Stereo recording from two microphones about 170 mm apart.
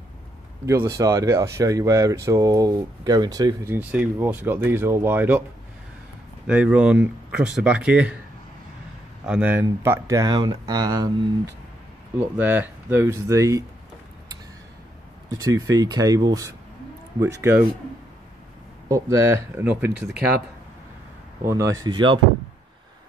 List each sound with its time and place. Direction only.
0.7 s speech: 15° right (ahead or behind)
6.4 s speech: 5° right (ahead or behind)
9.2 s speech: 10° right (ahead or behind)
12.4 s speech: 10° right (ahead or behind)
15.3 s speech: 20° right (ahead or behind)
18.9 s speech: 20° right (ahead or behind)
21.5 s speech: 20° right (ahead or behind)